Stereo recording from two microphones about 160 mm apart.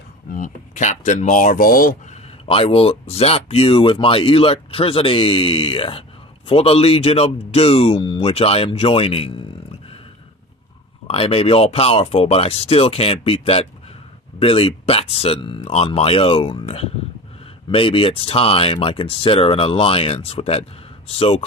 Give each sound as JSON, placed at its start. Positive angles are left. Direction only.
{"t": 0.3, "sound": "speech", "side_deg": 55}
{"t": 2.4, "sound": "speech", "side_deg": 35}
{"t": 11.1, "sound": "speech", "side_deg": 35}